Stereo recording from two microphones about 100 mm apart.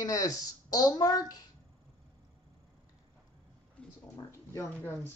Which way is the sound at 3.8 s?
15° left (ahead or behind).